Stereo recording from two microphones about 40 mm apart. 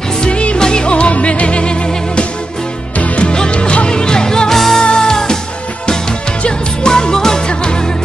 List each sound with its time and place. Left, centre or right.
0.2 s music: left
3.3 s music: left
4.6 s music: centre
4.8 s music: centre
6.8 s music: centre